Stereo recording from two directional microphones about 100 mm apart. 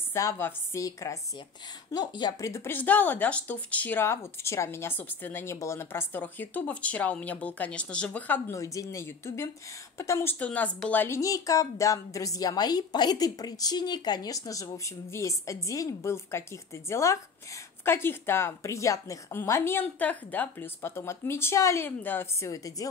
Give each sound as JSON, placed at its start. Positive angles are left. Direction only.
{"t": 0.1, "sound": "a woman's voice", "side_deg": 30}
{"t": 1.9, "sound": "speech", "side_deg": 45}
{"t": 2.4, "sound": "speech", "side_deg": 25}
{"t": 8.5, "sound": "a woman's voice", "side_deg": 35}
{"t": 10.4, "sound": "speech", "side_deg": 15}
{"t": 11.1, "sound": "a woman's voice", "side_deg": 35}